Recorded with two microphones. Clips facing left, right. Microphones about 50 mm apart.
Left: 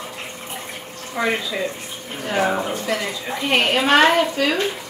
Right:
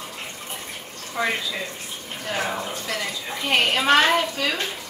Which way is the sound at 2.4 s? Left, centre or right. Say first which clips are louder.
Left 10 dB; left.